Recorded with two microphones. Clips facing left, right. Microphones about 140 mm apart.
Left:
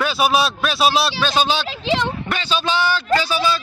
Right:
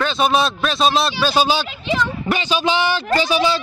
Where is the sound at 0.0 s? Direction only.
5° left (ahead or behind).